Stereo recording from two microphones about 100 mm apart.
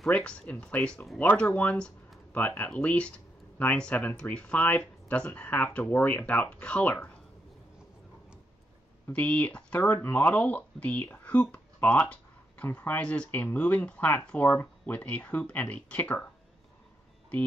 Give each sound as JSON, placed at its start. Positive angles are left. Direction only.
{"t": 0.0, "sound": "speech", "side_deg": 10}
{"t": 9.1, "sound": "speech", "side_deg": 15}